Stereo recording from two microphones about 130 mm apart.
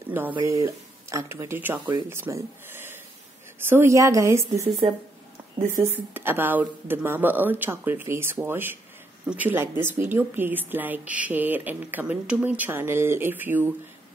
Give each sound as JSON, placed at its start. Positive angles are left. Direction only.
{"t": 0.1, "sound": "a woman's voice", "side_deg": -15}
{"t": 5.8, "sound": "a woman's voice", "side_deg": -15}